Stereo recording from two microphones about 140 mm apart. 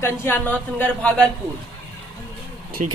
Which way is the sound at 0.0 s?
15° left (ahead or behind).